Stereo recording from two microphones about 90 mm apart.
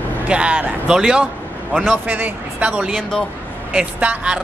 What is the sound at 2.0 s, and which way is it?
Speech, 20° right (ahead or behind).